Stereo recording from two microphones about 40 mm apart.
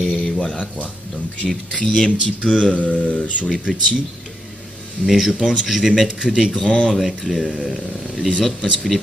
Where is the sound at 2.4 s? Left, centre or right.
Left.